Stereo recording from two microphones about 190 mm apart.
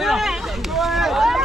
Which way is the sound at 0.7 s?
Centre (ahead or behind).